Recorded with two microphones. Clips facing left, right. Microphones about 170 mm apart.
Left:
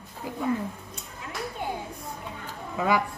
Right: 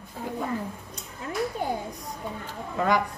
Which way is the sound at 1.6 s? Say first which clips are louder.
Right 1 dB; 40° right (ahead or behind).